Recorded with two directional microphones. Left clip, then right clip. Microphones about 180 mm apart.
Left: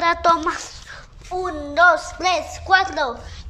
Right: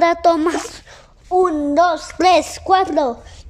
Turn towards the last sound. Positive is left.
turn(degrees=-35)  # may be behind; listen again after turning